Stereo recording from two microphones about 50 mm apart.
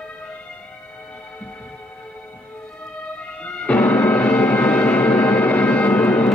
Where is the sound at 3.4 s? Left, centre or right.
Left.